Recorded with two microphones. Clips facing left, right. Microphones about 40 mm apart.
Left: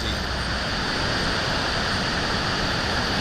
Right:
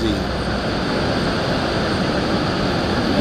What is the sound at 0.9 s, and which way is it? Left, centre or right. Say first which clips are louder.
Vehicle: right 5 dB; right.